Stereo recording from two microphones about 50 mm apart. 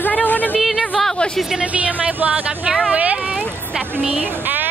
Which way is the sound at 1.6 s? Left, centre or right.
Right.